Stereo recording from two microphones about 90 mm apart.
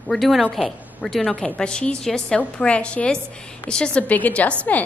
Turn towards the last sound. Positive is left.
turn(degrees=15)  # may be behind; listen again after turning